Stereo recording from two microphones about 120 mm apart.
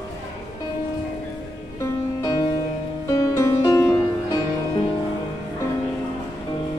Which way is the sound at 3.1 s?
25° left (ahead or behind).